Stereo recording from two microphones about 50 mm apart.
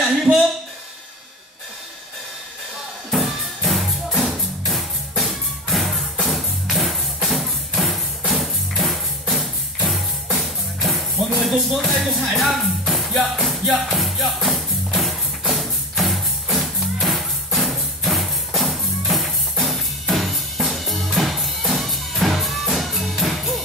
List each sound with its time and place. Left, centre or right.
0.0 s a sound: centre
3.1 s music: centre
11.7 s speech: centre
13.5 s music: centre